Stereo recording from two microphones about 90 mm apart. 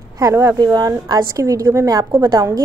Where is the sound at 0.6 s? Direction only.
45° right (ahead or behind).